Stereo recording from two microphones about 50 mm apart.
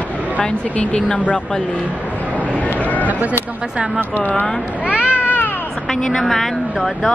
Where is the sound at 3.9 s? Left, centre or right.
Left.